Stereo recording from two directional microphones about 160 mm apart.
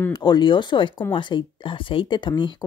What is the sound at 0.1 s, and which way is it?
Speech, 25° left (ahead or behind).